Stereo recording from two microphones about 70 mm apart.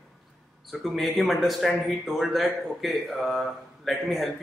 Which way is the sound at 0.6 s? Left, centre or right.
Centre.